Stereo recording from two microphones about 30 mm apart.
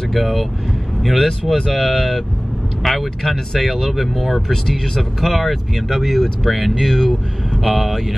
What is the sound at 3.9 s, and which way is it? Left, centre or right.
Speech, centre.